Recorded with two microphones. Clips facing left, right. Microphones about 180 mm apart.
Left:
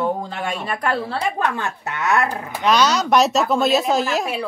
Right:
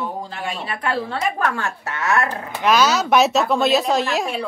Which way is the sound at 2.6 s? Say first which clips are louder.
Even; 5° right (ahead or behind).